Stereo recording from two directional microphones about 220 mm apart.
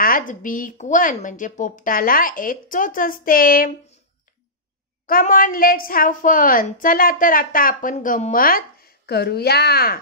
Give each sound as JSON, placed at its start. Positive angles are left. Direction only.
{"t": 0.0, "sound": "a woman's voice", "side_deg": 40}
{"t": 5.0, "sound": "a woman's voice", "side_deg": 40}